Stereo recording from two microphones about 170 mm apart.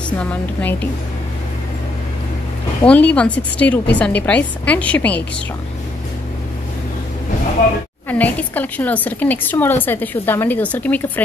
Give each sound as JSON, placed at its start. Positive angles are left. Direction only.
{"t": 0.2, "sound": "a woman's voice", "side_deg": 10}
{"t": 2.8, "sound": "a woman's voice", "side_deg": 5}
{"t": 8.1, "sound": "a woman's voice", "side_deg": 10}